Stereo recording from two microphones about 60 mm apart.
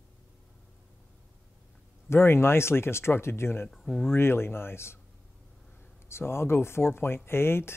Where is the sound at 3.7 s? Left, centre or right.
Centre.